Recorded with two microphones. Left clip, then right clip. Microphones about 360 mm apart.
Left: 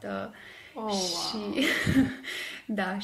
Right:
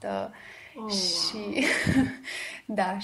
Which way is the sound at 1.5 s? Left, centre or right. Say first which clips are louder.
Right 1 dB; centre.